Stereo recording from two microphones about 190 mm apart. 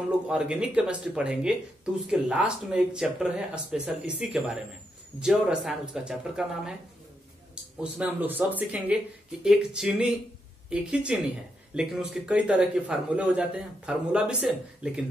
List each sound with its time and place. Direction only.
0.3 s a man's voice: 5° right (ahead or behind)
7.8 s a man's voice: 10° right (ahead or behind)